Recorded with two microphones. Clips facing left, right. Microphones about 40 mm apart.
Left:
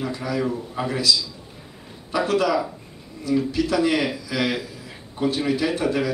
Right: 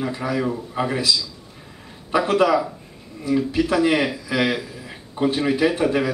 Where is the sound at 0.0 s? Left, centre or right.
Centre.